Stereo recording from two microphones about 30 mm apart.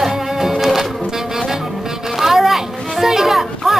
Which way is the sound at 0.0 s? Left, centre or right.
Centre.